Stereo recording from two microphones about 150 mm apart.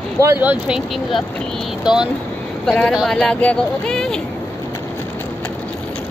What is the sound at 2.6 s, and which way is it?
Speech, 5° left (ahead or behind).